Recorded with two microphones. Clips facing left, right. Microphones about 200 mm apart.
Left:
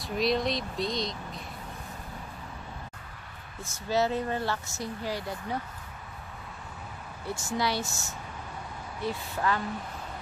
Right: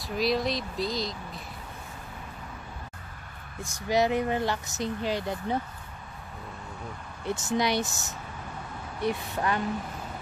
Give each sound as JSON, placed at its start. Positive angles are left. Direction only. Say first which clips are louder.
{"t": 0.0, "sound": "speech", "louder": "even", "side_deg": 0}
{"t": 3.6, "sound": "speech", "louder": "right 2 dB", "side_deg": -15}
{"t": 7.2, "sound": "speech", "louder": "right 3 dB", "side_deg": -20}